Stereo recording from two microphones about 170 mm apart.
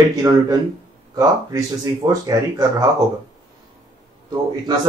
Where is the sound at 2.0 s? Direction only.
25° right (ahead or behind).